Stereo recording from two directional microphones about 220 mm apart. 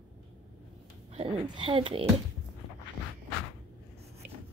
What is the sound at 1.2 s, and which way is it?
Speech, 25° right (ahead or behind).